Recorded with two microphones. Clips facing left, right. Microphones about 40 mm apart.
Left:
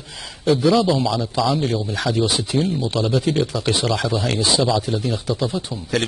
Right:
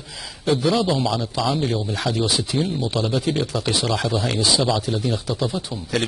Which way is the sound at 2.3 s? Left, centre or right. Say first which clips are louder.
Even; centre.